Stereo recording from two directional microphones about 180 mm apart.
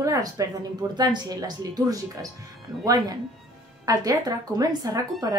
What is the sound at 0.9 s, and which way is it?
A woman's voice, 25° right (ahead or behind).